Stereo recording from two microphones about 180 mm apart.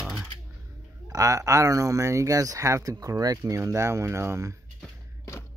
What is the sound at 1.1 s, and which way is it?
Speech, 15° right (ahead or behind).